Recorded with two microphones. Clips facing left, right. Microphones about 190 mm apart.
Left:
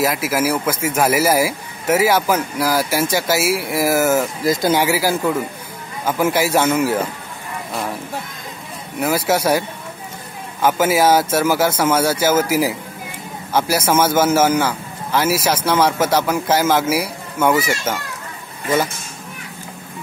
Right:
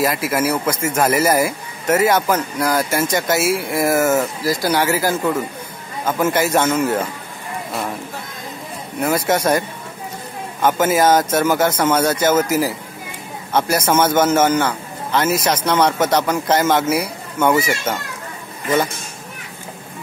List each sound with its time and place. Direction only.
0.0 s a man's voice: centre (ahead or behind)
4.4 s speech: 20° left (ahead or behind)
4.8 s a man's voice: 10° left (ahead or behind)
9.0 s a man's voice: 5° left (ahead or behind)